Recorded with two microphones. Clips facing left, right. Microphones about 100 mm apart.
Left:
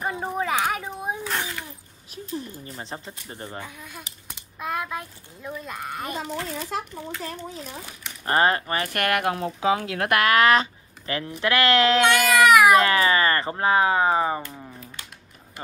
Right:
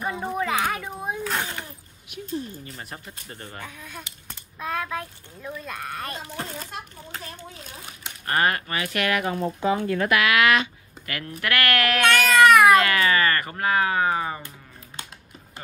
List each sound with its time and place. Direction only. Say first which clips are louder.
0.4 s a sound: left 1 dB; 20° left (ahead or behind)
2.0 s speech: right 2 dB; 35° left (ahead or behind); by 3.7 s 20° left (ahead or behind)
3.8 s a child's voice: right 1 dB; 5° left (ahead or behind)
8.3 s speech: left 3 dB; 25° left (ahead or behind)
8.8 s speech: even; 50° left (ahead or behind); by 10.0 s 80° left
10.0 s speech: left 2 dB; 45° left (ahead or behind); by 12.8 s 15° left (ahead or behind)
12.8 s speech: left 1 dB; 25° left (ahead or behind)